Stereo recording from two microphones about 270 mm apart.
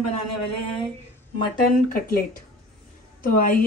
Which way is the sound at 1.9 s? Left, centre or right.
Left.